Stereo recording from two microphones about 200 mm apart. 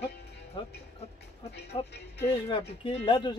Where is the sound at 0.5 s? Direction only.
25° left (ahead or behind).